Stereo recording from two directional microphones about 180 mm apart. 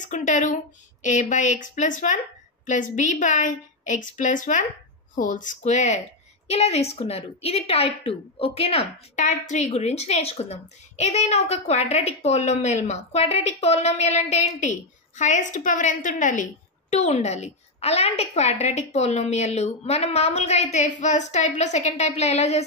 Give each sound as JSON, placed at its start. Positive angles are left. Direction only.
{"t": 0.0, "sound": "a woman's voice", "side_deg": 45}